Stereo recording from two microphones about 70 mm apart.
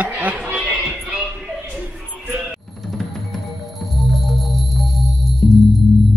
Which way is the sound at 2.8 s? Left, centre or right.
Centre.